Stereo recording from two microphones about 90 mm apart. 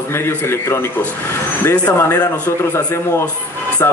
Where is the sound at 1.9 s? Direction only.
30° left (ahead or behind).